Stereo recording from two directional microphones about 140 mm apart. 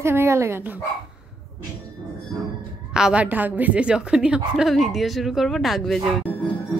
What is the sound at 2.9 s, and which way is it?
A woman's voice, 5° right (ahead or behind).